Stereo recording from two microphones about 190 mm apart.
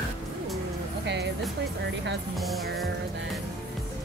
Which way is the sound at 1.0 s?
65° right (ahead or behind).